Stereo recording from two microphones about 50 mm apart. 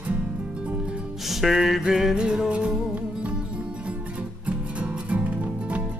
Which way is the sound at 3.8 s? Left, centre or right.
Right.